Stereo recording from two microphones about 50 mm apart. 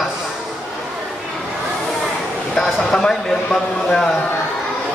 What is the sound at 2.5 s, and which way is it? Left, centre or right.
Speech, centre.